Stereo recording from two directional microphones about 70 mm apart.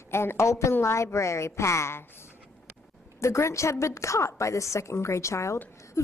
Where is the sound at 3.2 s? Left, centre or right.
Left.